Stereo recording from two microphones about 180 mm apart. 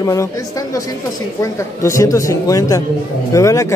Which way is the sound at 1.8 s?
15° left (ahead or behind).